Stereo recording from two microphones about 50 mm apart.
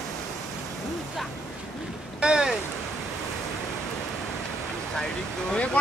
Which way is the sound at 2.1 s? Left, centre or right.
Centre.